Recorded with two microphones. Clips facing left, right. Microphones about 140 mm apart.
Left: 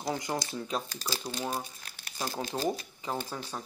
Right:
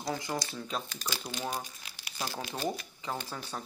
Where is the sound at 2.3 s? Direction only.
35° left (ahead or behind).